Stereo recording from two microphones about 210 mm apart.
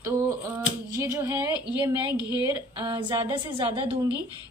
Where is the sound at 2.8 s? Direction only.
25° right (ahead or behind).